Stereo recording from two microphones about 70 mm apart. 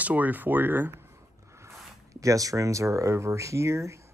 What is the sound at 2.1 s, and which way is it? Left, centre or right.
Speech, right.